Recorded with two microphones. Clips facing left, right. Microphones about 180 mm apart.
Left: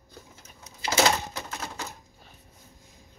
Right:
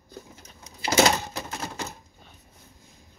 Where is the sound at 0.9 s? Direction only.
20° right (ahead or behind).